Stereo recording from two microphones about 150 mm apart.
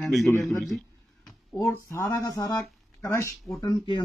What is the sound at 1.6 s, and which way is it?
Speech, 20° left (ahead or behind).